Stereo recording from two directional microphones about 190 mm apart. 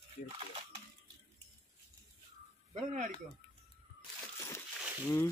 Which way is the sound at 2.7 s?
40° right (ahead or behind).